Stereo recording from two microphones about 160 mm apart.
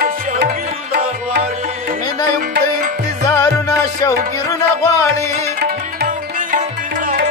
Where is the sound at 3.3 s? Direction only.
25° left (ahead or behind).